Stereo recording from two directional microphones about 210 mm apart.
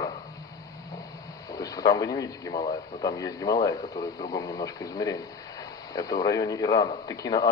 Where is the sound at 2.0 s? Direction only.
15° left (ahead or behind).